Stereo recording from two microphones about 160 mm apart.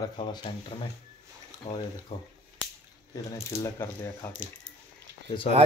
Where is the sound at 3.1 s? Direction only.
20° left (ahead or behind).